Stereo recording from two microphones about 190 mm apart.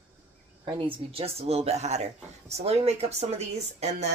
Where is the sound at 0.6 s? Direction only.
30° right (ahead or behind).